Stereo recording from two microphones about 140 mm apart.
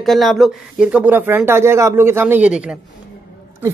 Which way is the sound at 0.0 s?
Centre (ahead or behind).